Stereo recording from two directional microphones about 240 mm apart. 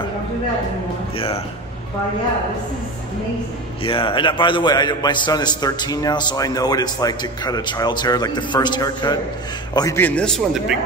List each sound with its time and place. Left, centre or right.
1.1 s a man's voice: left
3.8 s a man's voice: left; by 10.6 s centre